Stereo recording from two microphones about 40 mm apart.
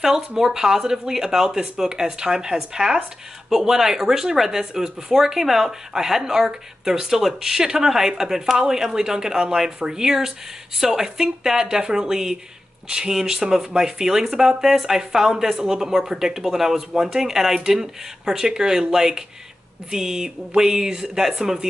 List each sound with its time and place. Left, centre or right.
0.4 s speech: centre